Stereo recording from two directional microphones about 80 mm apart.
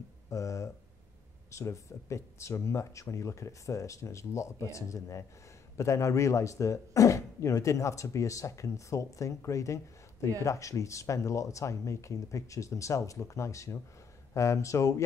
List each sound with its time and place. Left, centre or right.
0.3 s a man's voice: left